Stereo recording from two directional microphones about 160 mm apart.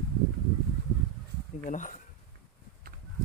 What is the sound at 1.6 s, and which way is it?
Speech, 50° left (ahead or behind).